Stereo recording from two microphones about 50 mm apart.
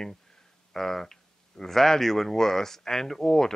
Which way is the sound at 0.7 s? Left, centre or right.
Centre.